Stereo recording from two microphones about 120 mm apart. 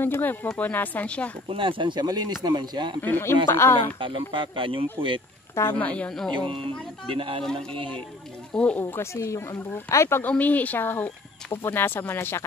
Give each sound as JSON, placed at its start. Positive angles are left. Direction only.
{"t": 0.0, "sound": "speech", "side_deg": 15}
{"t": 1.5, "sound": "speech", "side_deg": -45}
{"t": 3.0, "sound": "speech", "side_deg": 20}
{"t": 4.0, "sound": "speech", "side_deg": -45}
{"t": 5.8, "sound": "speech", "side_deg": 10}
{"t": 6.3, "sound": "speech", "side_deg": -45}
{"t": 8.5, "sound": "speech", "side_deg": 10}
{"t": 8.9, "sound": "speech", "side_deg": 25}